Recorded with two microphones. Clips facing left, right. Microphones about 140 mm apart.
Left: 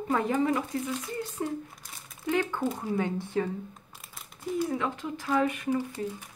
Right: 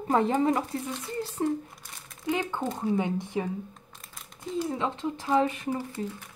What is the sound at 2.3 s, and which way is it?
Speech, 20° right (ahead or behind).